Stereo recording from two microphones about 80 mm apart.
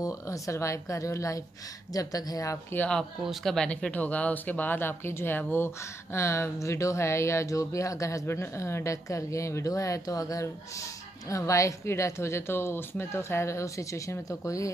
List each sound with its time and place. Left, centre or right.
0.0 s speech: left
3.3 s speech: centre; by 14.7 s left